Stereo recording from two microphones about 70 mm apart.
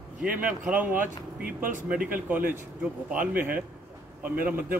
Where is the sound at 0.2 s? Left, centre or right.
Centre.